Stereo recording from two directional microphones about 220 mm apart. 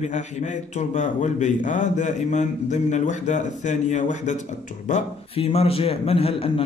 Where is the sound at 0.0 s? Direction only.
30° left (ahead or behind).